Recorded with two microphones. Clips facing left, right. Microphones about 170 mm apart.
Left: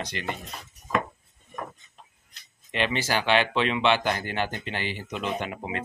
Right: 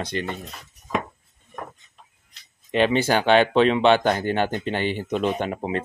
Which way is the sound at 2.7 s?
40° right (ahead or behind).